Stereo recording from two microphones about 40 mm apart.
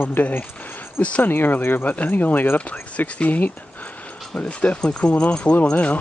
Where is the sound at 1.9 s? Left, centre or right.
Left.